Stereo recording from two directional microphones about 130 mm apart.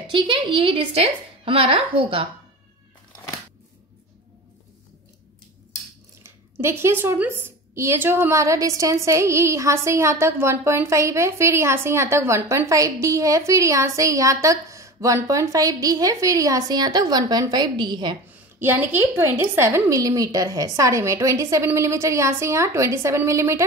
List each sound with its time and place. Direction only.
0.1 s a woman's voice: 40° right (ahead or behind)
6.2 s a woman's voice: 20° right (ahead or behind); by 18.1 s 35° right (ahead or behind)
18.6 s a woman's voice: 15° right (ahead or behind)